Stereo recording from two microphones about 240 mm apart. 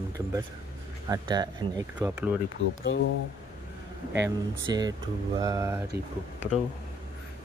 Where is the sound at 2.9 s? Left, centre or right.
Left.